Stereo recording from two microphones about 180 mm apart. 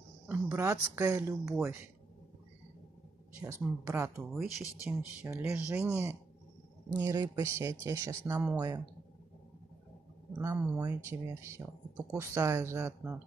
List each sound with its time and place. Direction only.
0.3 s speech: 15° right (ahead or behind)
3.5 s speech: 15° right (ahead or behind)
4.3 s speech: centre (ahead or behind)
5.2 s a man's voice: 15° right (ahead or behind)
10.3 s speech: 15° right (ahead or behind)